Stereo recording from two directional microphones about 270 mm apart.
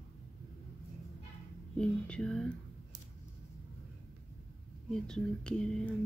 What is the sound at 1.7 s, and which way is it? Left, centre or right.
Speech, centre.